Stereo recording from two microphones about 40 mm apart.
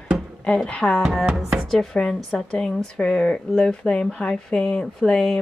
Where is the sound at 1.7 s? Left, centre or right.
Centre.